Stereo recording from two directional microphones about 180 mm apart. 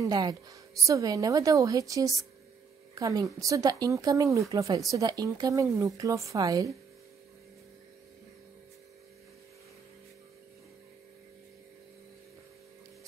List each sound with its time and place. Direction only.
0.0 s a woman's voice: 20° right (ahead or behind)